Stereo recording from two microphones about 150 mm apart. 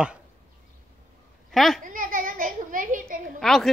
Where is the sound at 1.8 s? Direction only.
65° right (ahead or behind).